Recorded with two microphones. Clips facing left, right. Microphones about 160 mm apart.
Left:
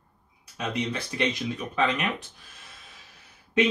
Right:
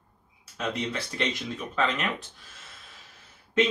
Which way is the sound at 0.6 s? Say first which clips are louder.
Left 1 dB; 15° left (ahead or behind).